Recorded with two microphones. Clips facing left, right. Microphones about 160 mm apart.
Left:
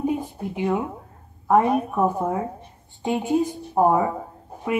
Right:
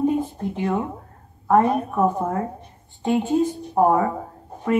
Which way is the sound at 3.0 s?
15° left (ahead or behind).